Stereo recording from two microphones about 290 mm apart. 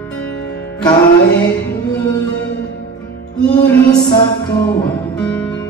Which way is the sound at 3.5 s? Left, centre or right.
Centre.